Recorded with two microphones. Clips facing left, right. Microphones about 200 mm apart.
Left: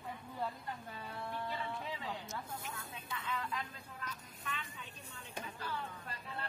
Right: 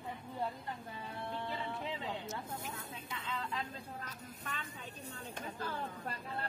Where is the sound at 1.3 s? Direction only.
25° right (ahead or behind).